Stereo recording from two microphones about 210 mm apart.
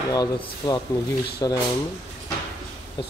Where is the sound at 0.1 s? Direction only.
20° left (ahead or behind).